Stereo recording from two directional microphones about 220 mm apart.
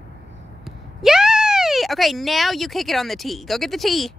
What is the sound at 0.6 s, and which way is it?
Speech, centre (ahead or behind).